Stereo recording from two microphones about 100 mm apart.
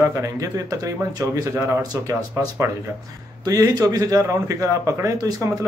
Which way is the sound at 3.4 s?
35° right (ahead or behind).